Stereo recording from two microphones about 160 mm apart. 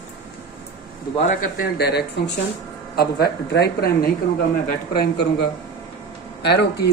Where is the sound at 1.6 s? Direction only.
90° left.